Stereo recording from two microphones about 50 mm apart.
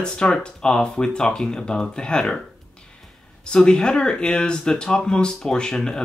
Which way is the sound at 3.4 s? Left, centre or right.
Centre.